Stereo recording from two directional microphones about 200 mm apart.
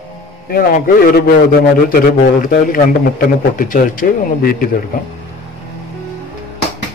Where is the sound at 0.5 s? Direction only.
50° left (ahead or behind).